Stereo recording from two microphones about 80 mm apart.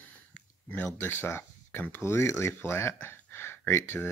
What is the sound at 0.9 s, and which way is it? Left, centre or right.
Speech, left.